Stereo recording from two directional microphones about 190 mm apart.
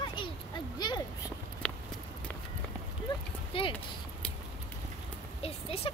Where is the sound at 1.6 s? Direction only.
5° left (ahead or behind).